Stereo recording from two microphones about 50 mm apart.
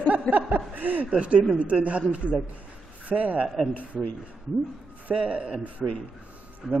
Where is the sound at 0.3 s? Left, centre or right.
Right.